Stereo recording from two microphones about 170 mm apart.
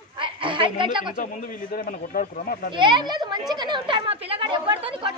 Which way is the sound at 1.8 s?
55° left (ahead or behind).